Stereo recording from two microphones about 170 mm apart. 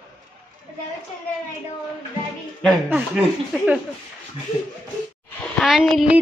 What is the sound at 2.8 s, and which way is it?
Speech, 10° right (ahead or behind).